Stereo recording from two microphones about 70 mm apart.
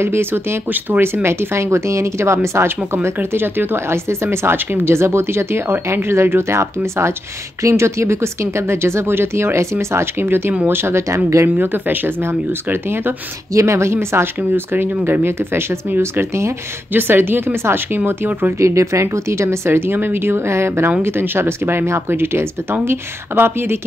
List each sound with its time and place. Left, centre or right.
0.0 s speech: right
11.5 s speech: right
13.5 s speech: right
18.6 s speech: right